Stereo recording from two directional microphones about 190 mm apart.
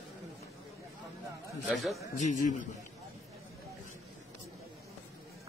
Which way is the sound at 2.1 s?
40° left (ahead or behind).